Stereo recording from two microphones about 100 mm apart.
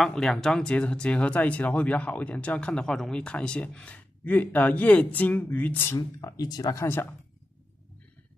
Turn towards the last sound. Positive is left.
turn(degrees=20)  # may be behind; listen again after turning